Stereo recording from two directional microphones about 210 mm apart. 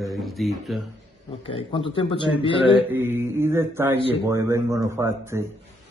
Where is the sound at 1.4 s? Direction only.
25° left (ahead or behind).